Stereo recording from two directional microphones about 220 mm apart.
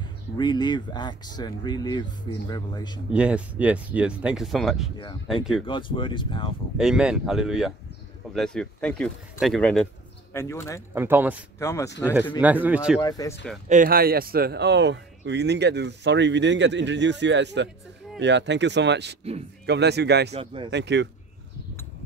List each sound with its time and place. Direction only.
0.4 s speech: 20° left (ahead or behind)
3.1 s speech: 5° right (ahead or behind)
5.7 s speech: 20° left (ahead or behind)
6.8 s speech: 5° right (ahead or behind)
11.0 s a man's voice: 10° right (ahead or behind)
11.6 s speech: 15° left (ahead or behind)
12.4 s a man's voice: 5° right (ahead or behind)
13.0 s speech: 15° left (ahead or behind)
13.7 s speech: 40° right (ahead or behind)
20.3 s speech: 20° right (ahead or behind)
20.7 s speech: 50° right (ahead or behind)